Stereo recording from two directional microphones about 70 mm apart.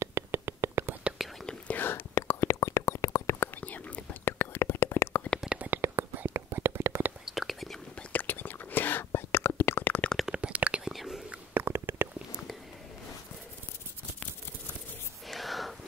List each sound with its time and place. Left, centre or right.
0.0 s a sound: right
1.7 s whispering: left
3.6 s whispering: left
5.8 s whispering: right
7.2 s whispering: centre
7.9 s whispering: left
10.1 s a sound: centre
10.9 s whispering: centre
11.5 s stomach rumble: right
15.2 s whispering: centre